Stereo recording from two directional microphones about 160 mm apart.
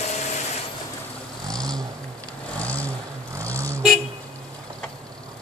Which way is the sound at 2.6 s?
10° left (ahead or behind).